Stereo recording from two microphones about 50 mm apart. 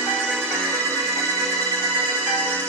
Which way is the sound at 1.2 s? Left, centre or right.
Centre.